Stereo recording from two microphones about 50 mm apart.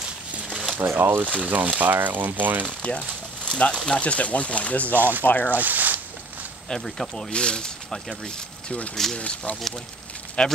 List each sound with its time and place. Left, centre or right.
0.9 s speech: right
1.4 s speech: right
2.8 s speech: left
4.0 s speech: left
4.9 s speech: right
5.2 s speech: left
5.6 s zipper: right
6.7 s speech: centre; by 8.9 s left
8.9 s speech: centre
9.2 s speech: left